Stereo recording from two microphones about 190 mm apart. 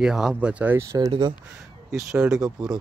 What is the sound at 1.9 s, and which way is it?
Speech, 5° right (ahead or behind).